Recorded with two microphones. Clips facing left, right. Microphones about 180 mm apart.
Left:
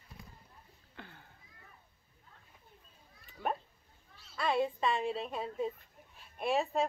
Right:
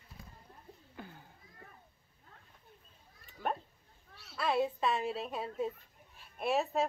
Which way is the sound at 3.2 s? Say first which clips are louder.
Even; centre (ahead or behind).